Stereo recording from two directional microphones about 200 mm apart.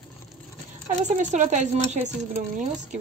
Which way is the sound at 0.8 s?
35° right (ahead or behind).